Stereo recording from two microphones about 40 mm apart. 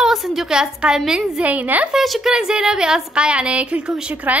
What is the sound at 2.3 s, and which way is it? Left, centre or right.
Speech, centre.